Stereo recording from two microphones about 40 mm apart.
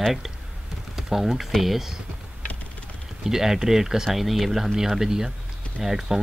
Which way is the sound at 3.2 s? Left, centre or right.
Centre.